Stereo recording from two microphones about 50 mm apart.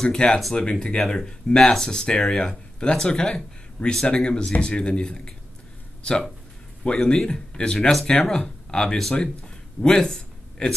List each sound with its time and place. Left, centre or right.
0.0 s speech: centre
0.7 s speech: centre
9.8 s a sound: centre